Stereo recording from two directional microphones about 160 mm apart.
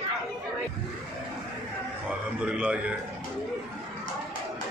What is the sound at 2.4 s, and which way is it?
Speech, 5° right (ahead or behind).